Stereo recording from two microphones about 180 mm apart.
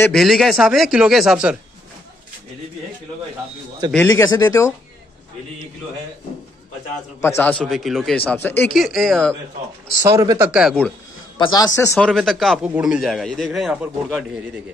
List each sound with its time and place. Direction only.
0.1 s speech: centre (ahead or behind)
4.1 s speech: 20° left (ahead or behind)
7.2 s speech: 15° left (ahead or behind)
8.7 s speech: centre (ahead or behind)
10.0 s a man's voice: 20° right (ahead or behind)
10.5 s speech: centre (ahead or behind)
11.3 s a man's voice: 20° left (ahead or behind)
11.9 s speech: centre (ahead or behind)